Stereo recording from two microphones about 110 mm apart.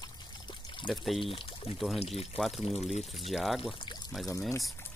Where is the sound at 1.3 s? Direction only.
60° left (ahead or behind).